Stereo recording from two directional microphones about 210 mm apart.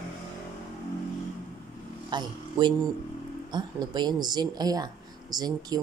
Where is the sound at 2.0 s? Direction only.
20° right (ahead or behind).